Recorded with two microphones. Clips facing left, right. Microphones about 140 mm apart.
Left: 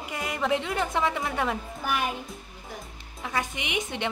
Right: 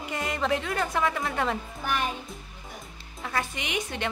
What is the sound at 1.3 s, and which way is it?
Speech, 10° left (ahead or behind).